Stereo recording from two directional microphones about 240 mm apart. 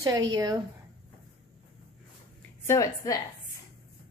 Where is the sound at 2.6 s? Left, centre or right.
Centre.